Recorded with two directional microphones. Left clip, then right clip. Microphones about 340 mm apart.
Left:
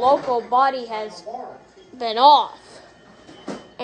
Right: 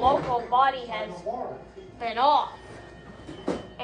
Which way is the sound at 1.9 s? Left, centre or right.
Left.